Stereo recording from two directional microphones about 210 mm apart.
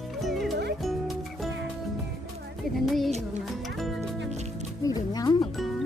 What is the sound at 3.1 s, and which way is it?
Music, 30° right (ahead or behind).